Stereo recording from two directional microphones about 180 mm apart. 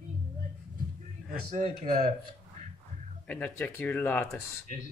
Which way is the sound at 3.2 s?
5° left (ahead or behind).